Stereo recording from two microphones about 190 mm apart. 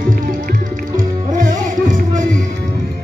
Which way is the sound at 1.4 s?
40° right (ahead or behind).